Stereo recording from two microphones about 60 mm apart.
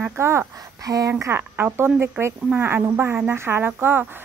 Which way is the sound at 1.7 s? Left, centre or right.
Right.